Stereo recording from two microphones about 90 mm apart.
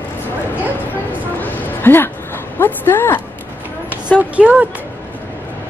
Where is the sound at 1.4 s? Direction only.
20° left (ahead or behind).